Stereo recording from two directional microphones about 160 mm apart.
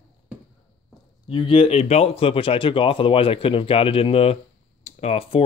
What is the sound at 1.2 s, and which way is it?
Speech, 30° left (ahead or behind).